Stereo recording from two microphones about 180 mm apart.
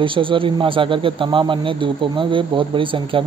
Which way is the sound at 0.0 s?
30° right (ahead or behind).